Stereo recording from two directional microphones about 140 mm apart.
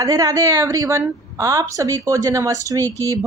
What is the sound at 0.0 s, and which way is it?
Speech, 25° right (ahead or behind).